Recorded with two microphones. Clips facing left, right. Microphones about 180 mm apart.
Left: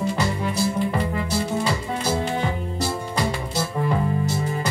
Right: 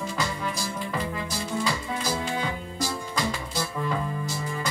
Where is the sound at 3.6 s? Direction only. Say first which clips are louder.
Left 6 dB; 35° left (ahead or behind).